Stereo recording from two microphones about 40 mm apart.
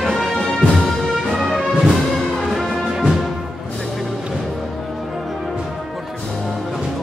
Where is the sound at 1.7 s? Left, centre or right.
Centre.